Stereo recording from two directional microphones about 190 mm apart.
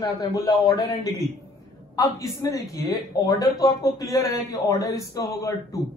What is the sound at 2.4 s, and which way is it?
A man's voice, 15° left (ahead or behind).